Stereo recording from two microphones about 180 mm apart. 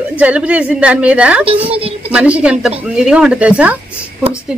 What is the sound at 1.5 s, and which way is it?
Speech, 30° right (ahead or behind).